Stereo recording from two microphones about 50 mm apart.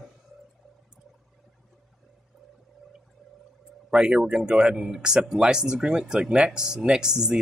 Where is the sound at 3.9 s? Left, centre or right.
Centre.